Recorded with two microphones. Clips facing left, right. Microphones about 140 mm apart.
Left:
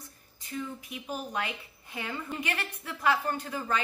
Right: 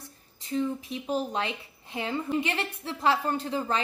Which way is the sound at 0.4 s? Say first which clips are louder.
Right 8 dB; 30° right (ahead or behind).